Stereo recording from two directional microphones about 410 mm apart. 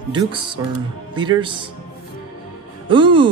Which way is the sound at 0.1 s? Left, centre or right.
Centre.